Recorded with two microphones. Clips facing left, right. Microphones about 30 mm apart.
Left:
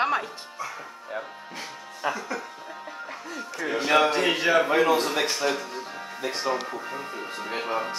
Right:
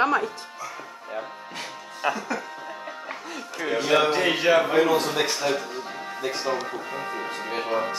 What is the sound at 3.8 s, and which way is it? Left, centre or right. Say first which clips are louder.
Speech: even; centre.